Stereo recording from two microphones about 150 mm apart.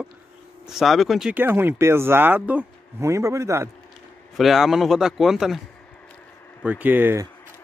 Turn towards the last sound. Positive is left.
turn(degrees=-15)  # may be behind; listen again after turning